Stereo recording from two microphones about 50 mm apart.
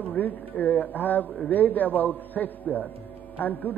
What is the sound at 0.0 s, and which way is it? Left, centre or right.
A man's voice, left.